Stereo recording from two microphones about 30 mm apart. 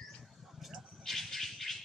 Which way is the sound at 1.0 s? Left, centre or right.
Centre.